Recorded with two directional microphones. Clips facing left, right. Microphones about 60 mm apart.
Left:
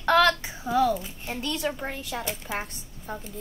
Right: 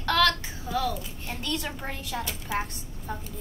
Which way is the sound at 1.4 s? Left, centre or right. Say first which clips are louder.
Left 3 dB; centre.